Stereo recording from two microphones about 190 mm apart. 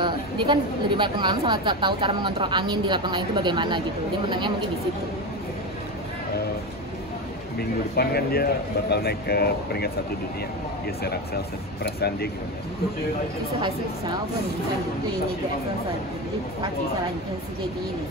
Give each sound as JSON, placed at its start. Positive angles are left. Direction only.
{"t": 0.0, "sound": "a woman's voice", "side_deg": -25}
{"t": 7.5, "sound": "speech", "side_deg": 55}
{"t": 11.8, "sound": "speech", "side_deg": 55}